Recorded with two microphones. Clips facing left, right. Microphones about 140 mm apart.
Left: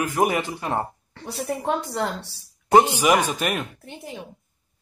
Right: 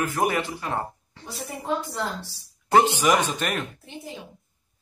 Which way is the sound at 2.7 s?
15° left (ahead or behind).